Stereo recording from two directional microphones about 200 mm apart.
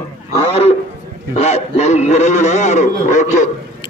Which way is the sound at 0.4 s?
30° left (ahead or behind).